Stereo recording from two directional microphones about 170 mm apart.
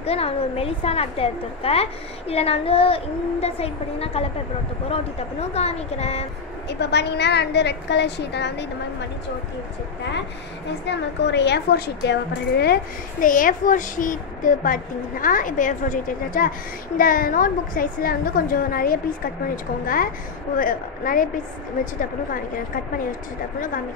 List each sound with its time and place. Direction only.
0.0 s a woman's voice: 35° left (ahead or behind)
6.7 s a woman's voice: 80° left
10.9 s a woman's voice: 85° left; by 21.9 s 50° left (ahead or behind)